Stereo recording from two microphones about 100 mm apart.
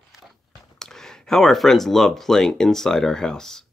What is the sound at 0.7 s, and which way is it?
Speech, 5° left (ahead or behind).